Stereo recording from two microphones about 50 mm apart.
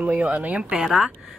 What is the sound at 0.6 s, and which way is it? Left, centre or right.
Speech, centre.